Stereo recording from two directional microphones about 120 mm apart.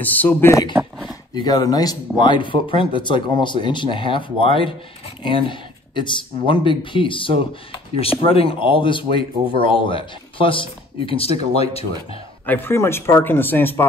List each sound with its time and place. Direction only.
0.0 s speech: 15° left (ahead or behind)
0.7 s a sound: 5° right (ahead or behind)
1.3 s speech: 35° left (ahead or behind); by 12.2 s 55° left (ahead or behind)
12.4 s speech: 15° left (ahead or behind)